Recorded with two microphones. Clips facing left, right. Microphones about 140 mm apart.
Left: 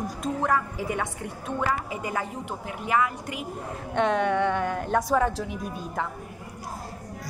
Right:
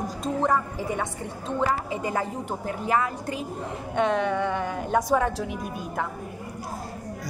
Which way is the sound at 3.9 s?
Centre (ahead or behind).